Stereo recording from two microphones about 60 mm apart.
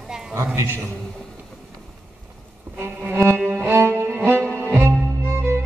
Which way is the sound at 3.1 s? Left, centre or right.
Right.